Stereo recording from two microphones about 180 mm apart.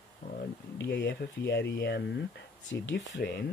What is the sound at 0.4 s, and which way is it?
Speech, 70° left (ahead or behind).